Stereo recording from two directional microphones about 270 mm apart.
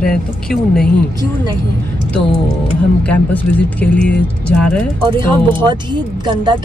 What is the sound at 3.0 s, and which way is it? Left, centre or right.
Speech, centre.